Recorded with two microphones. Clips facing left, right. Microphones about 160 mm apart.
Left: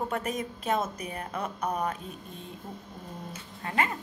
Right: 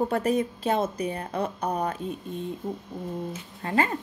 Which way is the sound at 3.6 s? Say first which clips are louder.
Right 4 dB; 30° right (ahead or behind).